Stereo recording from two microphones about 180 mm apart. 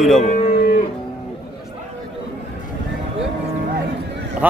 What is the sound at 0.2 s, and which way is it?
Speech, 40° left (ahead or behind).